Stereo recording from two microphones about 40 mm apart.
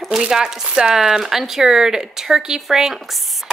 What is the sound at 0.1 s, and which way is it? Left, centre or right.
Speech, centre.